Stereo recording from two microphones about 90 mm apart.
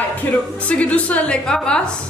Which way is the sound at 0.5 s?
15° left (ahead or behind).